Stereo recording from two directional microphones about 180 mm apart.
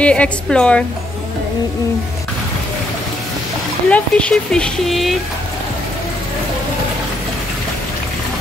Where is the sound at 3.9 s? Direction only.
5° left (ahead or behind).